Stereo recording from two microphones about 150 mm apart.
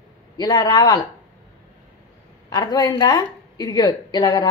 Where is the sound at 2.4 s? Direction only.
25° left (ahead or behind).